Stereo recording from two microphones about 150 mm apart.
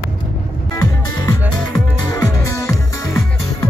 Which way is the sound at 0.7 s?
25° left (ahead or behind).